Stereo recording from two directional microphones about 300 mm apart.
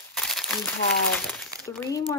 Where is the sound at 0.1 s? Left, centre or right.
Centre.